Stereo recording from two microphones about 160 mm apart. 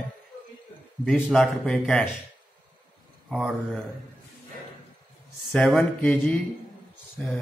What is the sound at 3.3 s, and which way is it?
Speech, centre (ahead or behind).